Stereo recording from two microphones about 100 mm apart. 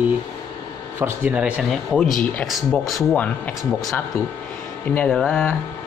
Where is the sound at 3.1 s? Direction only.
15° left (ahead or behind).